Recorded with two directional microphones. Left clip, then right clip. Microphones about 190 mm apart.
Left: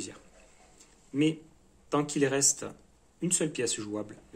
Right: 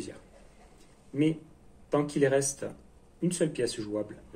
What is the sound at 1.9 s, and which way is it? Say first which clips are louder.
Speech: right 2 dB; 50° left (ahead or behind).